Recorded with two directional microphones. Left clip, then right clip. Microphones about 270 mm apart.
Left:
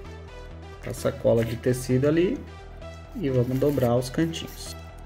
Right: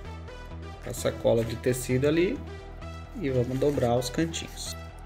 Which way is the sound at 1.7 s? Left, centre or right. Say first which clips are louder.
Left 2 dB; centre.